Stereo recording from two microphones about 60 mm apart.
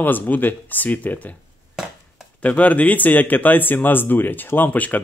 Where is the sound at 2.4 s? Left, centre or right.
Left.